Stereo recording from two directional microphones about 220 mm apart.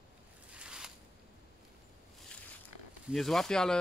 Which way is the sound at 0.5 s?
5° right (ahead or behind).